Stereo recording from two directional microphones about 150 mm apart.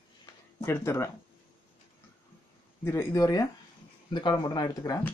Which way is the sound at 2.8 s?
15° left (ahead or behind).